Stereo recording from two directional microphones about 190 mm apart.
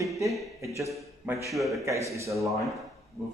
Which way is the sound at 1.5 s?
Centre (ahead or behind).